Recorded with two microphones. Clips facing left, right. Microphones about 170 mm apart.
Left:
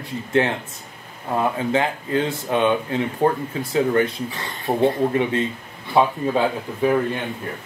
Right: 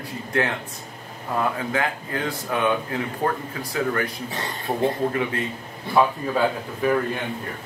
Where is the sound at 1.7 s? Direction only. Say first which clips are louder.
Left 5 dB; 25° left (ahead or behind).